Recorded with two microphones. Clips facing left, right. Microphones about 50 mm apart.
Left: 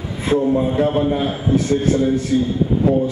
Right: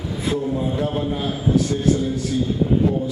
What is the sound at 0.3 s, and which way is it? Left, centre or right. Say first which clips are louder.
A man's voice: left 7 dB; left.